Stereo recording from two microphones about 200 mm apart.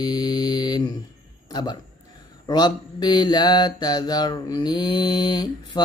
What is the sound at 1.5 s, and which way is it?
Speech, 20° left (ahead or behind).